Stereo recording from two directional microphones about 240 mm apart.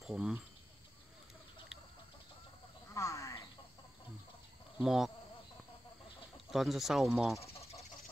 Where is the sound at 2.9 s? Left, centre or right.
Centre.